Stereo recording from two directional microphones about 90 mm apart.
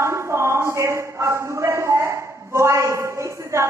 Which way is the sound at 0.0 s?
30° right (ahead or behind).